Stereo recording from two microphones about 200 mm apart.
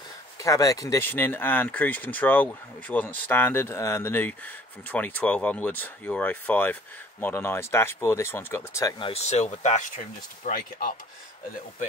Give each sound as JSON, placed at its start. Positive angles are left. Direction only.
{"t": 0.4, "sound": "speech", "side_deg": 15}
{"t": 9.0, "sound": "speech", "side_deg": 30}